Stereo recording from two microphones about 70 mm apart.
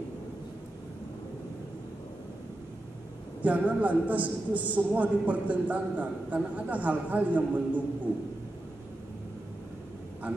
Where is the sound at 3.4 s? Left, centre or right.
Right.